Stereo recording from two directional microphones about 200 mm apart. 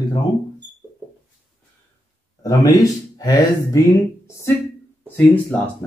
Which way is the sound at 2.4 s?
15° left (ahead or behind).